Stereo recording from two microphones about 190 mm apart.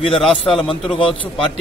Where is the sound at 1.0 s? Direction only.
25° left (ahead or behind).